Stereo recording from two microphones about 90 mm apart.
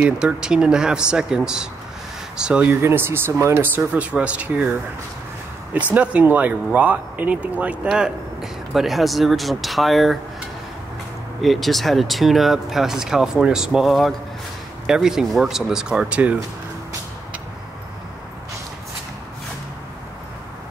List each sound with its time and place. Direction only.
0.0 s speech: 10° right (ahead or behind)
2.7 s speech: 25° right (ahead or behind)
5.7 s speech: 15° right (ahead or behind); by 10.1 s centre (ahead or behind)
11.4 s speech: centre (ahead or behind)